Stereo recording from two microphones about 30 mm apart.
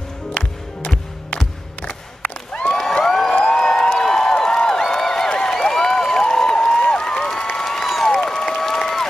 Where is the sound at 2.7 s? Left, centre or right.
Left.